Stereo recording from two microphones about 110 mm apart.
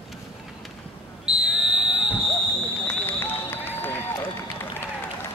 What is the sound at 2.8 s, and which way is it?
Run, 20° left (ahead or behind).